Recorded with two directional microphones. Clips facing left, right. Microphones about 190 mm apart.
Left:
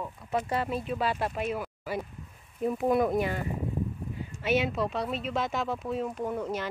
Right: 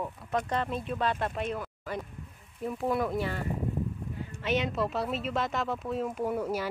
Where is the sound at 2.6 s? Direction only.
20° left (ahead or behind).